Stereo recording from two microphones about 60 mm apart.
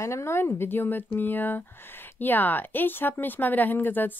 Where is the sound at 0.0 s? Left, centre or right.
Left.